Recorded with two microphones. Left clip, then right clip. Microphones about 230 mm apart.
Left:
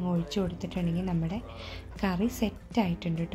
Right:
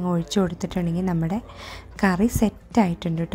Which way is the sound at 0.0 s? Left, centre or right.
Right.